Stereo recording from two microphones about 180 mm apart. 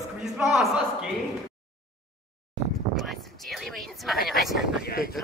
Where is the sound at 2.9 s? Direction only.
Centre (ahead or behind).